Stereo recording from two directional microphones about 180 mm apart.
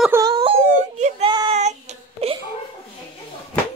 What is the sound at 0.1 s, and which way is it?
Whimper, 20° right (ahead or behind).